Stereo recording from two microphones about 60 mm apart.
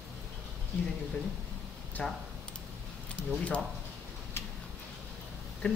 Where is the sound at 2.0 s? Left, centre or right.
Centre.